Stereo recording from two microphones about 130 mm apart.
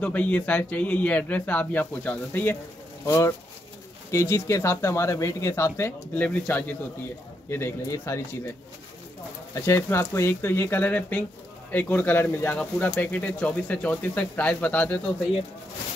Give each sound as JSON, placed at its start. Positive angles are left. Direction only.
{"t": 0.0, "sound": "speech", "side_deg": 10}
{"t": 9.5, "sound": "speech", "side_deg": 20}